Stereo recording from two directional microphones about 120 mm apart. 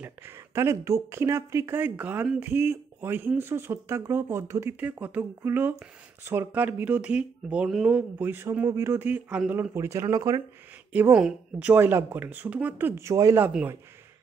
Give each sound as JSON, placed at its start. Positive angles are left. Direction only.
{"t": 0.0, "sound": "speech", "side_deg": -20}
{"t": 10.9, "sound": "speech", "side_deg": -10}
{"t": 13.4, "sound": "speech", "side_deg": -10}